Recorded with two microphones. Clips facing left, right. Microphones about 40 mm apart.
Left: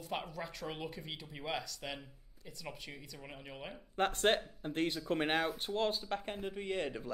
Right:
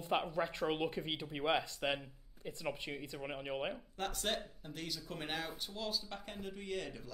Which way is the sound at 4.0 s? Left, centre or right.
Left.